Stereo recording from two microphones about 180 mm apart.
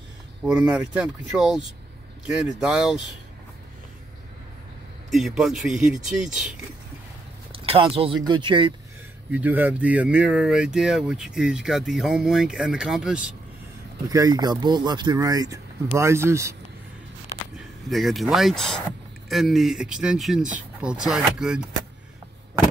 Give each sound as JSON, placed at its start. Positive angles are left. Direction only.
{"t": 0.4, "sound": "speech", "side_deg": -5}
{"t": 5.1, "sound": "speech", "side_deg": 0}
{"t": 7.5, "sound": "speech", "side_deg": -30}
{"t": 9.3, "sound": "speech", "side_deg": -10}
{"t": 14.0, "sound": "speech", "side_deg": -20}
{"t": 17.8, "sound": "speech", "side_deg": 0}